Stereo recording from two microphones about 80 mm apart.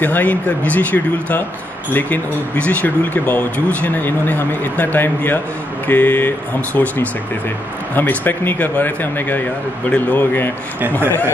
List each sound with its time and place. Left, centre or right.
0.0 s speech: left